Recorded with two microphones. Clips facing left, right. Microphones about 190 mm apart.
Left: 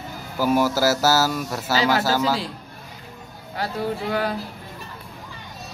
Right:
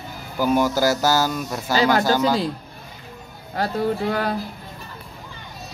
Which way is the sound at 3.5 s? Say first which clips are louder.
Right 4 dB; 45° right (ahead or behind).